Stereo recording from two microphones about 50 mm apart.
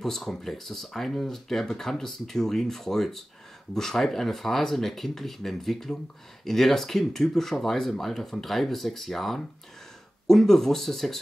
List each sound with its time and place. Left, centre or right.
0.0 s speech: centre